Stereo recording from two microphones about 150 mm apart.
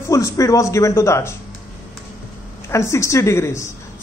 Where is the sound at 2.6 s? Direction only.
20° left (ahead or behind).